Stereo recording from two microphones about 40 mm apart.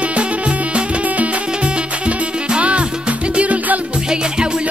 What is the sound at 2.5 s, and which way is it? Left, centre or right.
Music, right.